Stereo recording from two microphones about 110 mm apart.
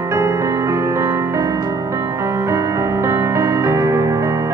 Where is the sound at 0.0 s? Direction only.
25° right (ahead or behind).